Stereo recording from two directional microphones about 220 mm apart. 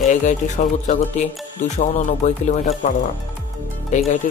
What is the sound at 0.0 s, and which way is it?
Speech, 30° left (ahead or behind).